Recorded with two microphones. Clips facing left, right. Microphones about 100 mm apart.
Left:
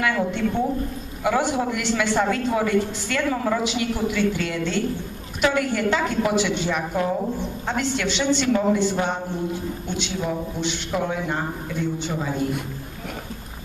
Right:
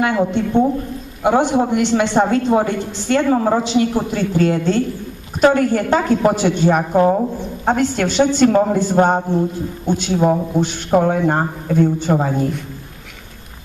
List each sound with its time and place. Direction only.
0.0 s a woman's voice: 25° right (ahead or behind); by 12.4 s 50° right (ahead or behind)